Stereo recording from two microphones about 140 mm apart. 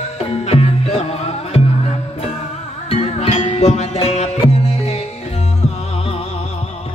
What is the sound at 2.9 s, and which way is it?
Music, 50° left (ahead or behind).